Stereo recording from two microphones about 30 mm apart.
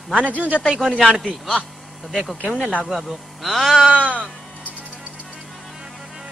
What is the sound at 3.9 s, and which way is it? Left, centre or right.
Speech, right.